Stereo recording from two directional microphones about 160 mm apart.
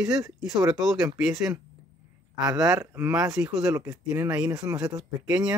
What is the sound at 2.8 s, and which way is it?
Speech, 15° right (ahead or behind).